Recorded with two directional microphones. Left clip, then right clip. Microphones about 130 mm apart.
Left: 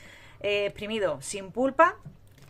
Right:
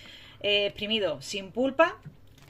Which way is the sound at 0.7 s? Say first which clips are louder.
Right 3 dB; 50° left (ahead or behind).